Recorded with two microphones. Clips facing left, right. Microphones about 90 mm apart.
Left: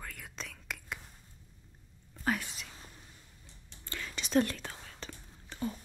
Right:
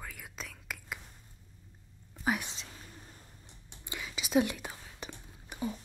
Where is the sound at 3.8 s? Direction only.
15° right (ahead or behind).